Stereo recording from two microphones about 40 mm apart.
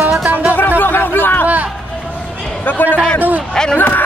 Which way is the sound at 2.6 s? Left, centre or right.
Left.